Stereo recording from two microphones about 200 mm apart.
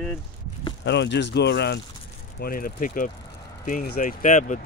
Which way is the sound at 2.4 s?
45° left (ahead or behind).